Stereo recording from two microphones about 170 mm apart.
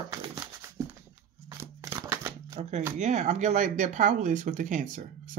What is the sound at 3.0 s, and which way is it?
Speech, 45° right (ahead or behind).